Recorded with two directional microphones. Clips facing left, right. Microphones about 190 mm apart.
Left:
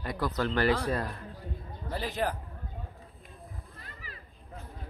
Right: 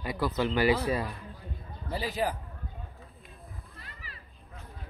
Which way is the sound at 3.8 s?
45° left (ahead or behind).